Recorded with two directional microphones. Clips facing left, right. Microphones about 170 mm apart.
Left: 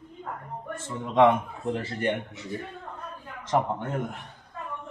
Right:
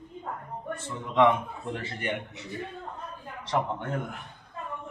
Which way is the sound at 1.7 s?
40° left (ahead or behind).